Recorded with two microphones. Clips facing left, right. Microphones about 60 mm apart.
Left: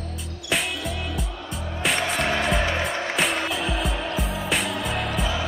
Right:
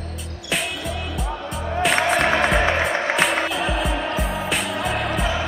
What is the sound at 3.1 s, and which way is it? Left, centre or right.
Music, centre.